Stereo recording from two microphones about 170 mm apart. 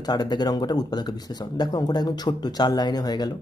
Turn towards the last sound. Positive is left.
turn(degrees=25)  # may be behind; listen again after turning